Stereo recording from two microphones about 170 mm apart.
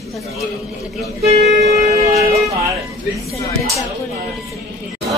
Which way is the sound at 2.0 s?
40° right (ahead or behind).